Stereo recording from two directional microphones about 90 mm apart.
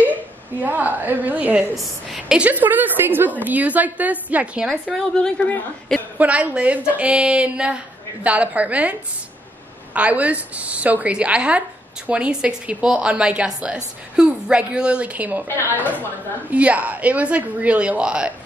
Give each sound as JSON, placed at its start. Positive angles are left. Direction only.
{"t": 0.6, "sound": "a woman's voice", "side_deg": -20}
{"t": 1.8, "sound": "a woman's voice", "side_deg": -5}
{"t": 4.9, "sound": "a woman's voice", "side_deg": 5}
{"t": 6.1, "sound": "speech", "side_deg": -15}
{"t": 9.9, "sound": "a woman's voice", "side_deg": -15}